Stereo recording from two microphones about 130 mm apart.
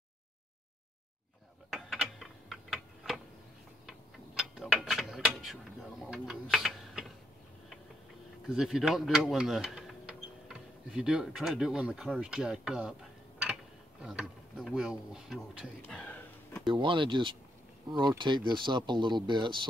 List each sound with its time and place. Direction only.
1.7 s tick-tock: centre (ahead or behind)
4.4 s mechanisms: 5° right (ahead or behind)
8.5 s speech: 5° right (ahead or behind)
14.0 s speech: 5° right (ahead or behind)
15.8 s a sound: 10° left (ahead or behind)
16.6 s speech: 40° right (ahead or behind)